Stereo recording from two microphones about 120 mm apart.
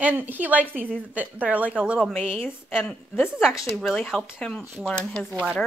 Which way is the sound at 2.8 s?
15° left (ahead or behind).